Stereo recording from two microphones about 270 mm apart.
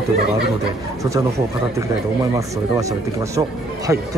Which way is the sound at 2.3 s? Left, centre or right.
Centre.